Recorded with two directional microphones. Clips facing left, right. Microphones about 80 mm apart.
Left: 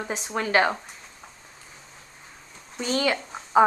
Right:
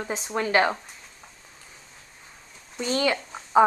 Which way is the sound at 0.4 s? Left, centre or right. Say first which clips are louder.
Even; left.